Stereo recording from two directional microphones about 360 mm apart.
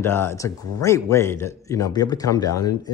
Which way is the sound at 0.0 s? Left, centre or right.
Centre.